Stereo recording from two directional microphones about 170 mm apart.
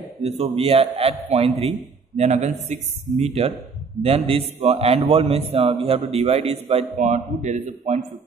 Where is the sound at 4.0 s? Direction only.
35° right (ahead or behind).